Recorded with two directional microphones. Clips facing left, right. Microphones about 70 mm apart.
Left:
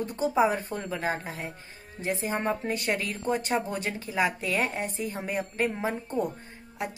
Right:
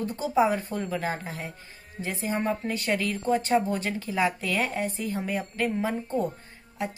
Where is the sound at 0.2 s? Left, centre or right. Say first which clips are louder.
Even; left.